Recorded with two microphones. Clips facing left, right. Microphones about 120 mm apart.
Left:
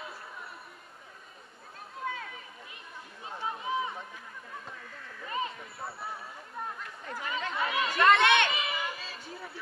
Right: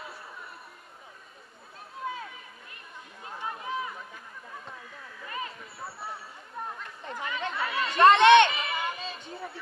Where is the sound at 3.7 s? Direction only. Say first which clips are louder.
Left 3 dB; 25° left (ahead or behind).